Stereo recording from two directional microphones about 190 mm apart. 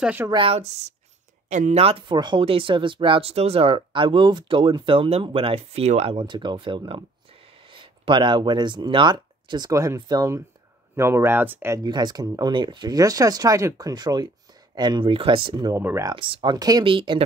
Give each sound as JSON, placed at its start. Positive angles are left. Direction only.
{"t": 0.0, "sound": "speech", "side_deg": -10}
{"t": 0.3, "sound": "speech", "side_deg": -30}